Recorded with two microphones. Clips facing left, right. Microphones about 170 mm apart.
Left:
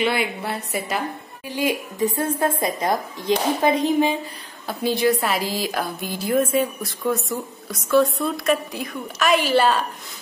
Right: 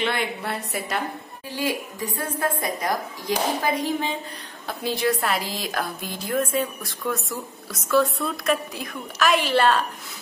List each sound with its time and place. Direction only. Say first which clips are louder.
0.0 s a woman's voice: left 3 dB; 5° left (ahead or behind)
1.5 s a woman's voice: left 3 dB; 15° left (ahead or behind)
4.6 s a woman's voice: left 4 dB; centre (ahead or behind)